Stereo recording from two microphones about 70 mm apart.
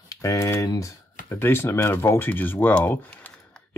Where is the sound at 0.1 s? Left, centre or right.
Left.